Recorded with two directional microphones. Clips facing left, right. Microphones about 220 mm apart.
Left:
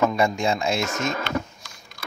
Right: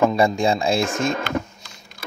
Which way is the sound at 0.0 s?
30° right (ahead or behind).